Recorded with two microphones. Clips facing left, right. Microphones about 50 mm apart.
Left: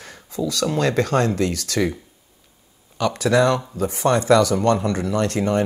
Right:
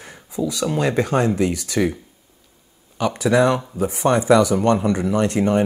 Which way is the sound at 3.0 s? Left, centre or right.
Centre.